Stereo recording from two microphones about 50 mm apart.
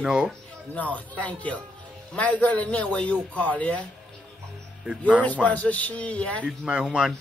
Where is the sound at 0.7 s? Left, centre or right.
Left.